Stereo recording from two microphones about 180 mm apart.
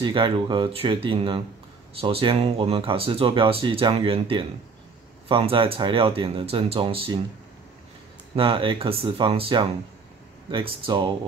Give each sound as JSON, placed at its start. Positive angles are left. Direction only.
{"t": 0.0, "sound": "speech", "side_deg": -25}
{"t": 8.4, "sound": "speech", "side_deg": -30}